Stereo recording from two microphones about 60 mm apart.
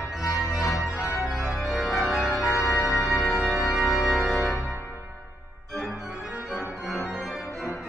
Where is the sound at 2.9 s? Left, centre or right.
Centre.